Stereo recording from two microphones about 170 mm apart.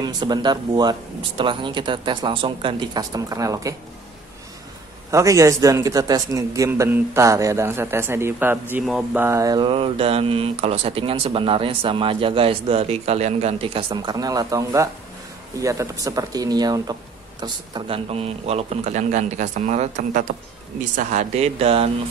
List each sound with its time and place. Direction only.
0.0 s a man's voice: 25° right (ahead or behind)
5.1 s a man's voice: 20° right (ahead or behind)
8.7 s mantra: 5° right (ahead or behind)
15.6 s a man's voice: 20° right (ahead or behind); by 20.2 s 45° right (ahead or behind)
20.9 s mantra: 45° right (ahead or behind)